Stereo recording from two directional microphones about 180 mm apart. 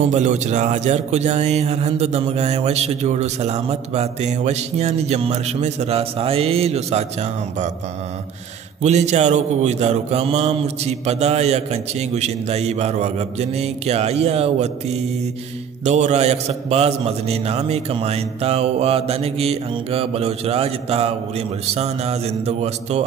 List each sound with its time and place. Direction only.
0.1 s speech: 40° right (ahead or behind)
8.8 s speech: 40° right (ahead or behind)
15.8 s speech: 40° right (ahead or behind)